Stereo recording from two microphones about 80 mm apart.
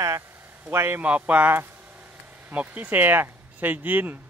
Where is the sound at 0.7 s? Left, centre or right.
Right.